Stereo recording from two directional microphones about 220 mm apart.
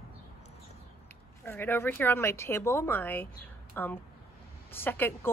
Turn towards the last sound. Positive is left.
turn(degrees=10)  # may be behind; listen again after turning